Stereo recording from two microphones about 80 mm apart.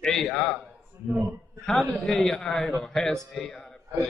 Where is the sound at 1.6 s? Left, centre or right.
Centre.